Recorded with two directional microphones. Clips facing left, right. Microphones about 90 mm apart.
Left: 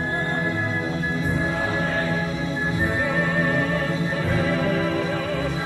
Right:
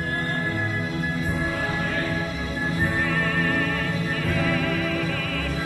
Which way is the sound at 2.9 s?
20° left (ahead or behind).